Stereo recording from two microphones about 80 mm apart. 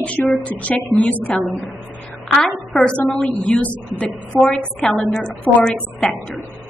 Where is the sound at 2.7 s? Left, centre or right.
Centre.